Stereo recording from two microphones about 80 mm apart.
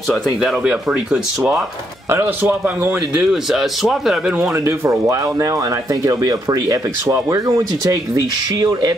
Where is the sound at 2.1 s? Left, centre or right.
Right.